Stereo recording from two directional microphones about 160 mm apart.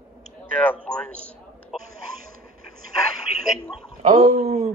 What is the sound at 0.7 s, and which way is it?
A man's voice, 10° left (ahead or behind).